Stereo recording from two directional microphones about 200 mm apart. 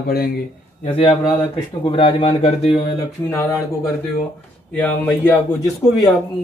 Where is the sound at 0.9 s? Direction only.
25° left (ahead or behind).